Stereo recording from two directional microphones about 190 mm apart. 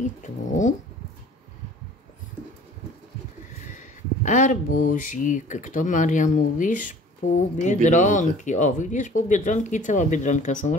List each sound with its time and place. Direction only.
0.0 s speech: 40° left (ahead or behind)
3.7 s speech: 40° left (ahead or behind)